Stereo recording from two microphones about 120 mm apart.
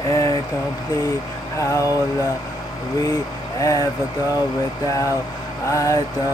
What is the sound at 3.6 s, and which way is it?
Mantra, 25° left (ahead or behind).